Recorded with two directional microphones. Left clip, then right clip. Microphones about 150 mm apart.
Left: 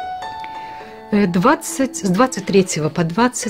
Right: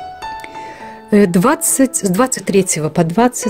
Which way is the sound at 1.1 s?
55° right (ahead or behind).